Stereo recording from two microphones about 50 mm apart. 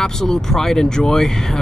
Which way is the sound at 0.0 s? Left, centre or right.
Centre.